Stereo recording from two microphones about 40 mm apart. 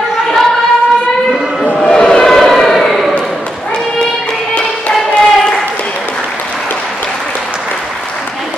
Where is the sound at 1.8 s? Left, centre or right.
Left.